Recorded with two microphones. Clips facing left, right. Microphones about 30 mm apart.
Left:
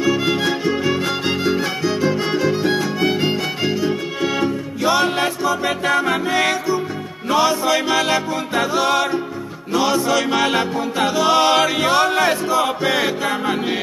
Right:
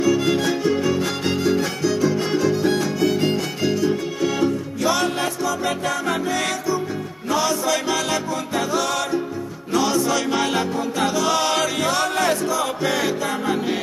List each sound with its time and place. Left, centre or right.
0.0 s music: left
10.4 s music: left